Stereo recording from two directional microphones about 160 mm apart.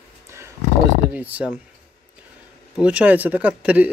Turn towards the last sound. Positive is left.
turn(degrees=-10)  # may be behind; listen again after turning